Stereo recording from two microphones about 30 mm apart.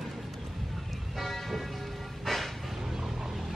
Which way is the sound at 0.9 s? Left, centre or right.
Centre.